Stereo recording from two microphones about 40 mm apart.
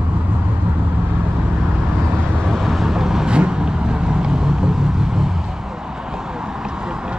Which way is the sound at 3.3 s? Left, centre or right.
Right.